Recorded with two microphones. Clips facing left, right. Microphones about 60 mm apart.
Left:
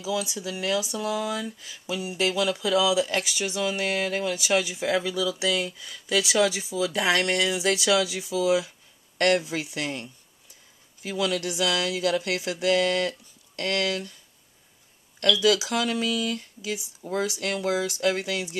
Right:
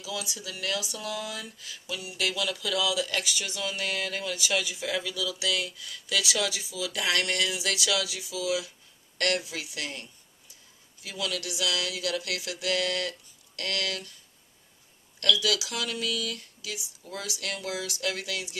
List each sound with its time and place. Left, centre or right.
0.0 s speech: left
15.1 s speech: left